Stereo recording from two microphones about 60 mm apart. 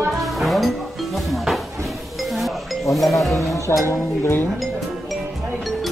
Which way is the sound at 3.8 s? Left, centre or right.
Left.